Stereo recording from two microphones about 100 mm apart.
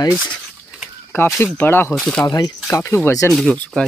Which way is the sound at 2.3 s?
40° left (ahead or behind).